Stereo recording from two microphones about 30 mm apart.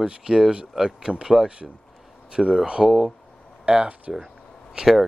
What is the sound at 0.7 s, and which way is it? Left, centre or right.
Speech, centre.